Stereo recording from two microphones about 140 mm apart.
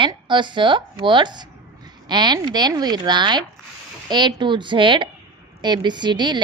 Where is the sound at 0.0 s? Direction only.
35° right (ahead or behind).